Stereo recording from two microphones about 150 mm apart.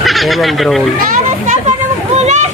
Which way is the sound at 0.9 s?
60° right (ahead or behind).